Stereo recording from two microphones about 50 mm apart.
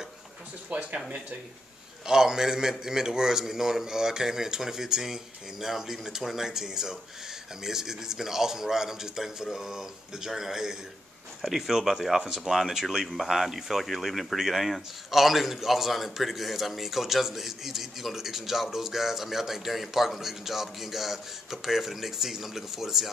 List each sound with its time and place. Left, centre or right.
0.7 s speech: right
2.0 s speech: centre